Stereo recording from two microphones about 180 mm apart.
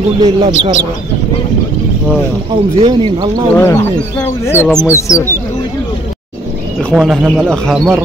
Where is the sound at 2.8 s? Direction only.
25° right (ahead or behind).